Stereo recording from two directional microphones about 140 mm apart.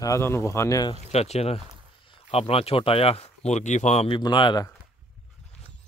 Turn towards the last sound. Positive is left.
turn(degrees=30)  # may be behind; listen again after turning